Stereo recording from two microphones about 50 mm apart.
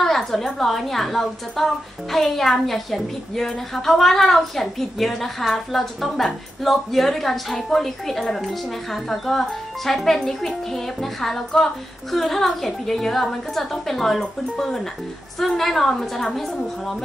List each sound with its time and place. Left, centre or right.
0.0 s a woman's voice: centre